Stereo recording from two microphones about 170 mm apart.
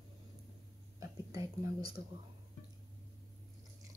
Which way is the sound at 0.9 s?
20° right (ahead or behind).